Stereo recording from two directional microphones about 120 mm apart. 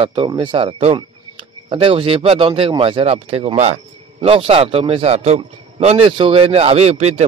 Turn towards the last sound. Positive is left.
turn(degrees=-60)  # may be behind; listen again after turning